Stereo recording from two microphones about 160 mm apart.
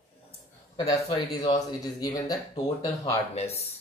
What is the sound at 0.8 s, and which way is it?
Speech, 30° left (ahead or behind).